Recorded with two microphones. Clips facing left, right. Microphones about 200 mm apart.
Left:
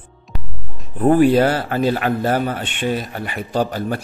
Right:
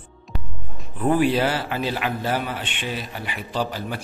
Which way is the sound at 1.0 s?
45° left (ahead or behind).